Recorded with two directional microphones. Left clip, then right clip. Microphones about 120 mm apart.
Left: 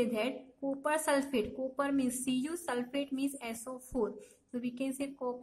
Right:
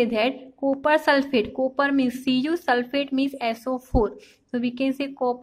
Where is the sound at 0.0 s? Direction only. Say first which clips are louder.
Right 11 dB; 25° right (ahead or behind).